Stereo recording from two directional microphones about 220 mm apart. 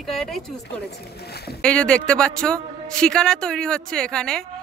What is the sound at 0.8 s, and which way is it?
Speech, 50° left (ahead or behind).